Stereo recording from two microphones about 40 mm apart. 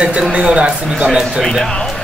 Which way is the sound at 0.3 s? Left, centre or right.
Right.